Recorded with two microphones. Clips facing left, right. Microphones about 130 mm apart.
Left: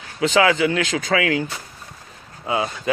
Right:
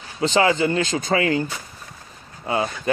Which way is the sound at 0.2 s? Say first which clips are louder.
Left 1 dB; 35° right (ahead or behind).